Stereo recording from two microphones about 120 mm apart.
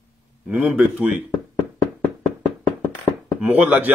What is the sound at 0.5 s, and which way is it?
Speech, 10° right (ahead or behind).